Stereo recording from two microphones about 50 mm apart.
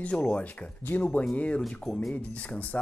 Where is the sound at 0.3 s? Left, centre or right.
Left.